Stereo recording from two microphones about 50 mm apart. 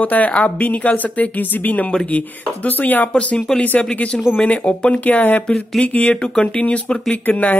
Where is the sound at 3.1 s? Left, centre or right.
Left.